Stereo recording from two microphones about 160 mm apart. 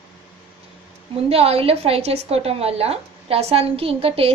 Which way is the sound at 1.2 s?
40° right (ahead or behind).